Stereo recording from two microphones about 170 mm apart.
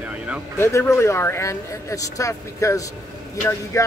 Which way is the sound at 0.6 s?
15° left (ahead or behind).